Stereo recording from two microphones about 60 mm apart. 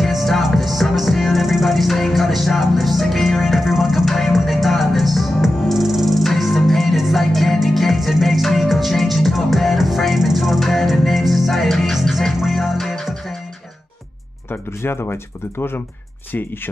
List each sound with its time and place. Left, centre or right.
0.0 s music: centre
14.5 s speech: left